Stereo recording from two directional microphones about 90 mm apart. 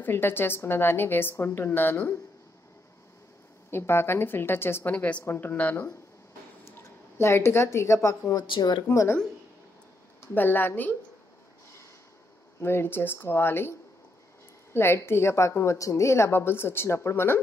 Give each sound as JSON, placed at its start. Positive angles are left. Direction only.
{"t": 0.0, "sound": "a woman's voice", "side_deg": 25}
{"t": 3.7, "sound": "a woman's voice", "side_deg": 25}
{"t": 4.9, "sound": "a woman's voice", "side_deg": 15}
{"t": 8.5, "sound": "speech", "side_deg": 55}
{"t": 8.8, "sound": "speech", "side_deg": 30}
{"t": 10.3, "sound": "a woman's voice", "side_deg": 20}
{"t": 12.5, "sound": "a woman's voice", "side_deg": 25}